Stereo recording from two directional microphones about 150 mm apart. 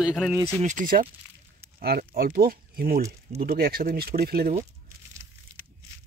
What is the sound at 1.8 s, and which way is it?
Speech, 90° right.